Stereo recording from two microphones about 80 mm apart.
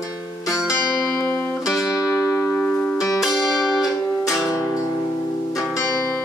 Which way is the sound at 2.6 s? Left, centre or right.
Centre.